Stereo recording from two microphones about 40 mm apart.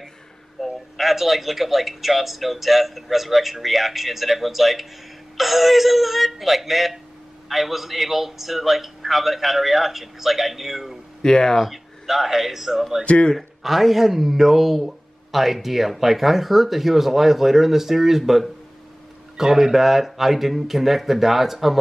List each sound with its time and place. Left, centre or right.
0.6 s a man's voice: centre
11.2 s speech: centre
11.6 s a man's voice: centre
13.0 s speech: left
13.6 s a man's voice: centre